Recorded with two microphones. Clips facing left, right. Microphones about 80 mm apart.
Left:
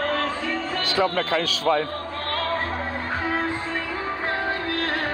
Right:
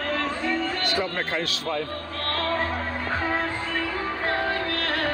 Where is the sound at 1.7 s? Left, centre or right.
Left.